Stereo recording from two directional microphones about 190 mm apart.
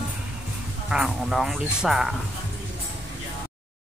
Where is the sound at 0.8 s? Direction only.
5° right (ahead or behind).